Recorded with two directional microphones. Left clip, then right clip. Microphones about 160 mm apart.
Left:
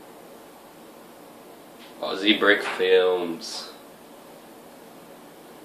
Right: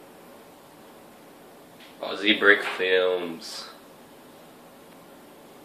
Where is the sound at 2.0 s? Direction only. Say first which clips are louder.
Even; 15° right (ahead or behind).